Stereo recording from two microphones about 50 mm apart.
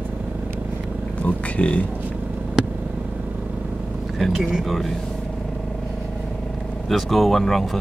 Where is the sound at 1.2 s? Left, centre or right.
Left.